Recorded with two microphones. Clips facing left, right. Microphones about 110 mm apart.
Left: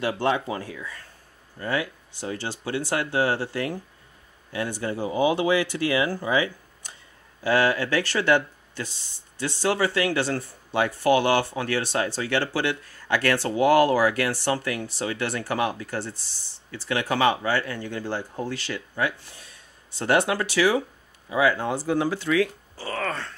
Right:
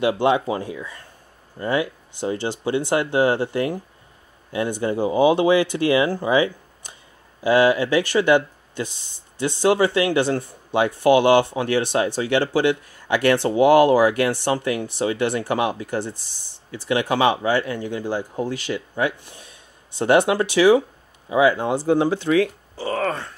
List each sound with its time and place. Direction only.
0.0 s speech: 15° right (ahead or behind)